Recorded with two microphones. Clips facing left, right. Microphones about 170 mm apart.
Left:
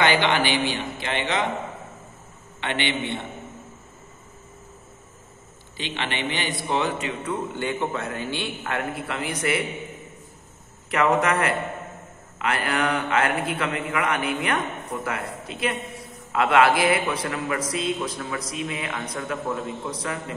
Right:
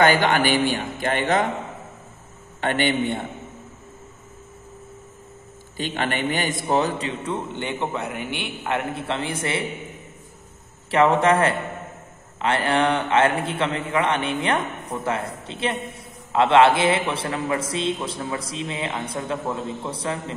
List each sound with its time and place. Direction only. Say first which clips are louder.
0.0 s a man's voice: right 3 dB; 45° right (ahead or behind)
2.6 s a man's voice: right 5 dB; 45° right (ahead or behind)
5.8 s a man's voice: right 4 dB; 45° right (ahead or behind); by 9.7 s 25° right (ahead or behind)
10.9 s a man's voice: right 4 dB; 30° right (ahead or behind)